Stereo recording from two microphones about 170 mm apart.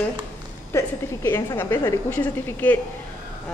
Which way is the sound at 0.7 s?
15° left (ahead or behind).